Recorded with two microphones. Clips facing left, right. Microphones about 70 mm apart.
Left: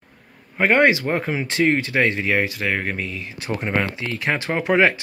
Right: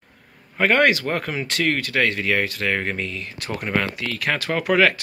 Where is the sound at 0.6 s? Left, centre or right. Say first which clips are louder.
Left 1 dB; centre.